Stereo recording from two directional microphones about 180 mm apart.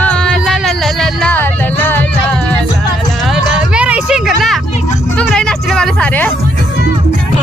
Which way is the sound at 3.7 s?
5° right (ahead or behind).